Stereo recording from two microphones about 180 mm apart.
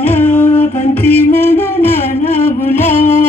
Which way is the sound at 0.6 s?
35° left (ahead or behind).